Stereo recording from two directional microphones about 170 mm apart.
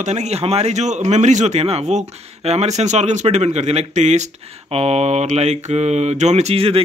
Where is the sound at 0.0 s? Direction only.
40° right (ahead or behind).